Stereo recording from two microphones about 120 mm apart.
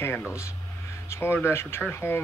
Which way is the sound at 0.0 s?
20° left (ahead or behind).